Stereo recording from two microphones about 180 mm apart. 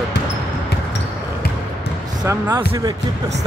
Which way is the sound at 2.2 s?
20° right (ahead or behind).